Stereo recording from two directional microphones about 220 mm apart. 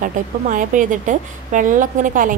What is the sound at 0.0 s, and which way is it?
A woman's voice, 35° right (ahead or behind).